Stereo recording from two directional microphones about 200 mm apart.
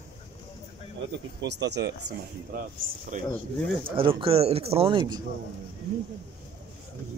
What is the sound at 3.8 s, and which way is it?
Speech, 25° right (ahead or behind).